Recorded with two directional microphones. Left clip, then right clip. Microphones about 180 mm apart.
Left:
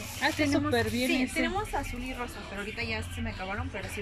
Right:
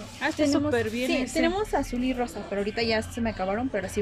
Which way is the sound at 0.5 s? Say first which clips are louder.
Right 3 dB; 5° right (ahead or behind).